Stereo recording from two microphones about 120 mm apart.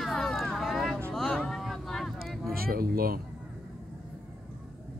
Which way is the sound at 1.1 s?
5° left (ahead or behind).